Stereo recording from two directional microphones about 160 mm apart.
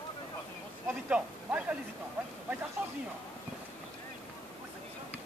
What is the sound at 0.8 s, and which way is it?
Speech, 10° right (ahead or behind).